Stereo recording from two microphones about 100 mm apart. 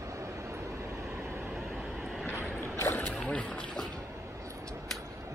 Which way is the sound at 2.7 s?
25° left (ahead or behind).